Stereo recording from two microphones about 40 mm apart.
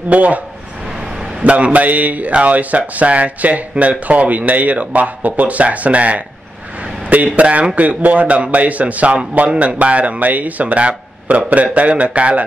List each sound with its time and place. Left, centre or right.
0.1 s speech: right
1.4 s speech: right
7.3 s speech: right